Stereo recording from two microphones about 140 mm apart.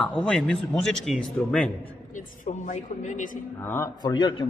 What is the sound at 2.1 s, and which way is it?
A woman's voice, 65° left (ahead or behind).